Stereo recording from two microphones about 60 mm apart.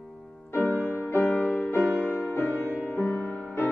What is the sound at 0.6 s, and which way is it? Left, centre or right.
Music, left.